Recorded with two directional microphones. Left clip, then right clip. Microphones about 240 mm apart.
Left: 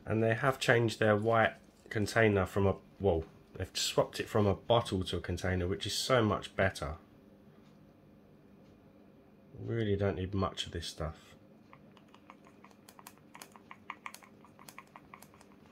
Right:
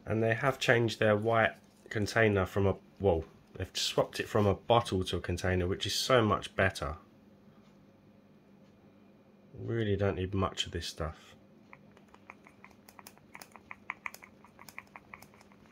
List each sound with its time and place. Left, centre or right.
0.0 s speech: centre
9.7 s speech: centre
12.6 s a sound: centre